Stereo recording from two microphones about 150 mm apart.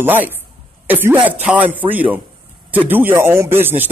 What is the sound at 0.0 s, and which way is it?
A man's voice, 15° right (ahead or behind).